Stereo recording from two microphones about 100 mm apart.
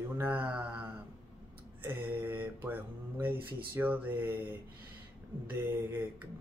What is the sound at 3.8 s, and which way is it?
Speech, 20° right (ahead or behind).